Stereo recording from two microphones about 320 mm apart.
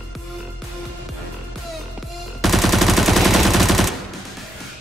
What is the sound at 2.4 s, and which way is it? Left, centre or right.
Gunshot, centre.